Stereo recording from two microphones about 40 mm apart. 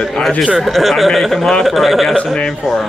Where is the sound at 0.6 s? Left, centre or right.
Centre.